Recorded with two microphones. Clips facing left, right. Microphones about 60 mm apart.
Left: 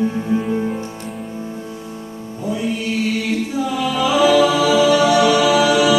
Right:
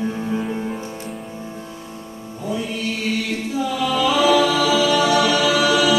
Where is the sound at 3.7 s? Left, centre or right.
Centre.